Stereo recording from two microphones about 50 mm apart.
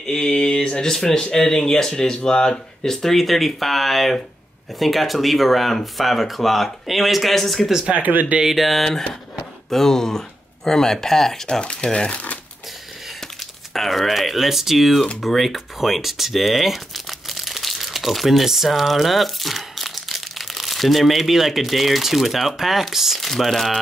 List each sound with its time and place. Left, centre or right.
0.0 s speech: centre
7.9 s speech: right
8.4 s speech: centre
11.4 s speech: centre
13.4 s speech: centre